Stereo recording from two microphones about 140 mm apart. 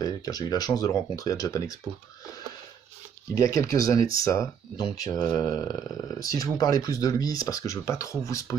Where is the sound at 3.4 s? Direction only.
25° left (ahead or behind).